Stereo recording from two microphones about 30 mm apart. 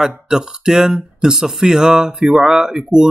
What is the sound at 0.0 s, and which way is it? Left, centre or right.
Speech, centre.